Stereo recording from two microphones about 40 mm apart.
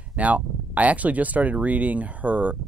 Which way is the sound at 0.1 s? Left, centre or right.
Right.